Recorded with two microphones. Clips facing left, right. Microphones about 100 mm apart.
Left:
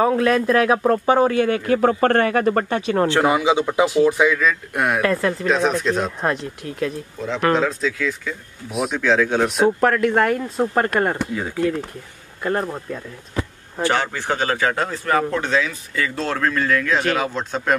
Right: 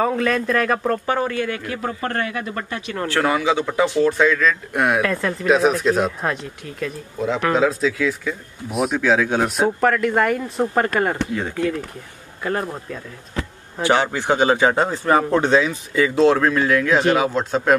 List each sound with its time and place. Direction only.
0.0 s speech: 5° left (ahead or behind); by 1.6 s 20° left (ahead or behind)
1.8 s a man's voice: 60° left (ahead or behind)
2.9 s speech: 25° left (ahead or behind); by 13.8 s 5° left (ahead or behind)
13.8 s a man's voice: 10° right (ahead or behind); by 15.7 s 25° right (ahead or behind)
15.9 s speech: 15° right (ahead or behind)